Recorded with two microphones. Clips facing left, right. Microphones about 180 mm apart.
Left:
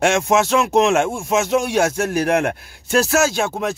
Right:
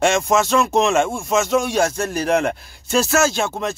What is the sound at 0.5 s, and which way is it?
Speech, 10° left (ahead or behind).